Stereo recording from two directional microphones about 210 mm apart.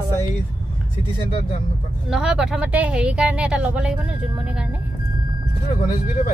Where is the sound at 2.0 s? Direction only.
5° right (ahead or behind).